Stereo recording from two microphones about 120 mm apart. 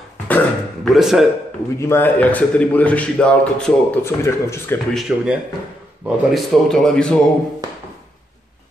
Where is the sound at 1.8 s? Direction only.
20° left (ahead or behind).